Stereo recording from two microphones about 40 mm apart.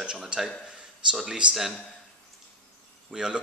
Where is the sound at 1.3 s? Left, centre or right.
Right.